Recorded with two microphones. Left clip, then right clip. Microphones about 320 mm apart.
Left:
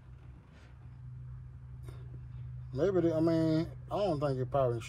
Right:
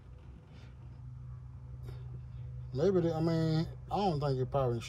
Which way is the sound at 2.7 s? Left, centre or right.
Left.